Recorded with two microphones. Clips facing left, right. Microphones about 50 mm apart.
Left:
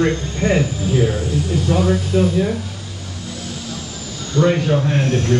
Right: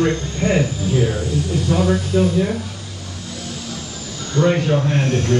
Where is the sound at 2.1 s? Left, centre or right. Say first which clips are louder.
Even; centre.